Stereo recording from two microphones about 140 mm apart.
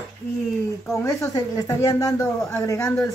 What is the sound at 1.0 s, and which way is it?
Speech, 20° left (ahead or behind).